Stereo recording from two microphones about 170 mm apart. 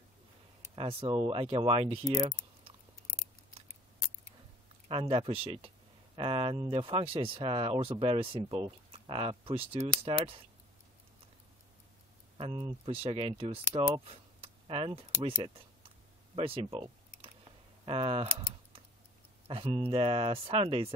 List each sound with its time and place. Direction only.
0.7 s speech: 30° right (ahead or behind)
4.8 s speech: 35° right (ahead or behind)
12.4 s speech: 30° right (ahead or behind)
16.3 s typing: 35° right (ahead or behind)
17.8 s speech: 30° right (ahead or behind)
19.4 s speech: 30° right (ahead or behind)